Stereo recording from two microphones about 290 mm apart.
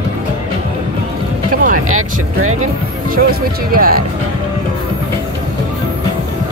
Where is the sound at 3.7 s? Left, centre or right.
Right.